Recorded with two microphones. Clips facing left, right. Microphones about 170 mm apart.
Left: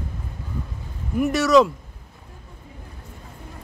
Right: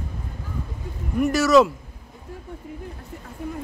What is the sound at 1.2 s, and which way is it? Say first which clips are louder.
Speech: even; centre (ahead or behind).